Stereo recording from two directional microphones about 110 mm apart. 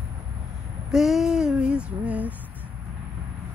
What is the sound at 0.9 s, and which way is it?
Female singing, 5° right (ahead or behind).